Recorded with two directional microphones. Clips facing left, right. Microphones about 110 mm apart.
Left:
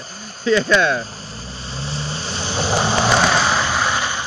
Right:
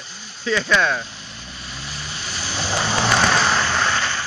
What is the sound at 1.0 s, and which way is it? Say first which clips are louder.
Vehicle: left 4 dB; 40° left (ahead or behind).